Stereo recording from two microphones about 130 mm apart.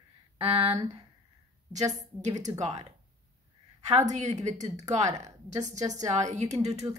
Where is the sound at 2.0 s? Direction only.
65° right (ahead or behind).